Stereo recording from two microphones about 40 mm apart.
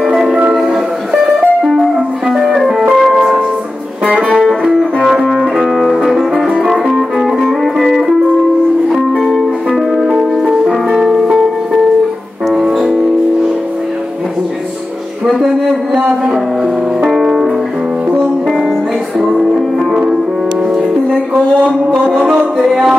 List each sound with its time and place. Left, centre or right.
0.1 s music: right
2.9 s music: centre
4.3 s music: centre
10.9 s music: centre
12.5 s music: centre
15.9 s a sound: centre
17.1 s music: centre
19.2 s music: centre
22.1 s music: right